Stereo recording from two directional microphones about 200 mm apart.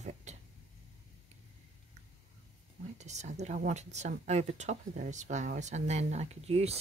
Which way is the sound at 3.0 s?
35° right (ahead or behind).